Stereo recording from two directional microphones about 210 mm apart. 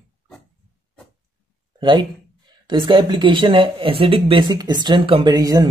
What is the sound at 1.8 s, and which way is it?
Speech, 20° right (ahead or behind).